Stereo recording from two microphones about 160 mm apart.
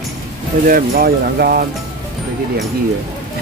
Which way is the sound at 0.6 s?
65° right (ahead or behind).